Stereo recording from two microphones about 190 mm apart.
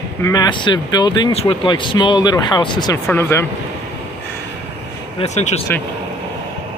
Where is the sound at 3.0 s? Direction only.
10° left (ahead or behind).